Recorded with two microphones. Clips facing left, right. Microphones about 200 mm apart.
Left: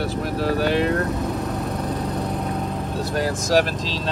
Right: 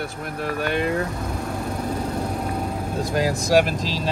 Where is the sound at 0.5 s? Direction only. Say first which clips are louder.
Left 2 dB; centre (ahead or behind).